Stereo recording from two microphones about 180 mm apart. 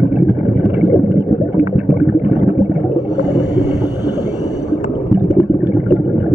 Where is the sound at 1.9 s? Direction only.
10° right (ahead or behind).